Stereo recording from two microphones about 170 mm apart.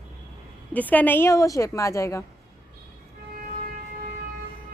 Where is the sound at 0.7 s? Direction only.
10° left (ahead or behind).